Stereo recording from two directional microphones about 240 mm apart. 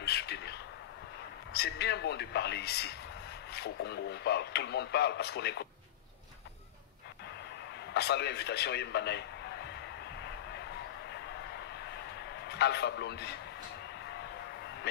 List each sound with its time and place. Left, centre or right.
0.0 s a man's voice: left
7.9 s speech: left
12.4 s a man's voice: left